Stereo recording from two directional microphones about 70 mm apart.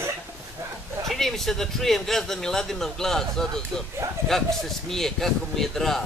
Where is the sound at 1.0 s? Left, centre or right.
Centre.